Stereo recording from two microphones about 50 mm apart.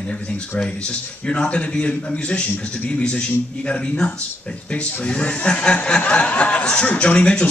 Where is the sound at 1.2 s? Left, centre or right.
Left.